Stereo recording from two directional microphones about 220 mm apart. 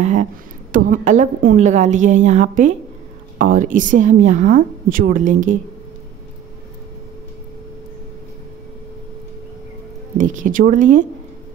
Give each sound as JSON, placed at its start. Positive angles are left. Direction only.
{"t": 0.0, "sound": "a woman's voice", "side_deg": -35}
{"t": 10.1, "sound": "a woman's voice", "side_deg": -35}